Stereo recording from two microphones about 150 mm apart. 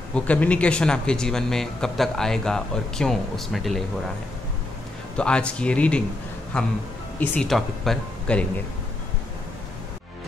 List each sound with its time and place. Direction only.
0.1 s speech: 10° left (ahead or behind)
5.1 s speech: 5° left (ahead or behind)